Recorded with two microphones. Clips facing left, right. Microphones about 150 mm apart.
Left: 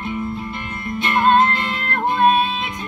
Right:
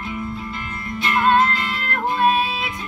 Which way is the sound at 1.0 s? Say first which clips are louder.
Left 2 dB; 25° left (ahead or behind).